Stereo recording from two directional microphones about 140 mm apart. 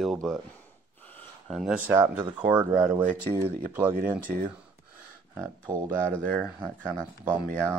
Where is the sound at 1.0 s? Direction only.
Centre (ahead or behind).